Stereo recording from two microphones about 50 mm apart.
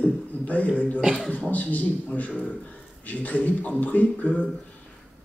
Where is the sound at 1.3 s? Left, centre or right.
Left.